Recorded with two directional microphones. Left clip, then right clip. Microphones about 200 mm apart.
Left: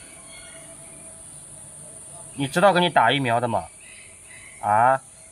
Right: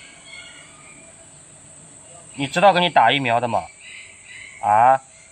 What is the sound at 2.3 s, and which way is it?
A man's voice, 10° right (ahead or behind).